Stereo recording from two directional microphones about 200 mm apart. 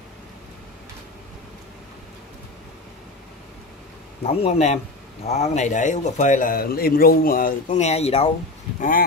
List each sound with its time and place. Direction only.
4.2 s a man's voice: 30° left (ahead or behind)
8.7 s speech: 40° left (ahead or behind)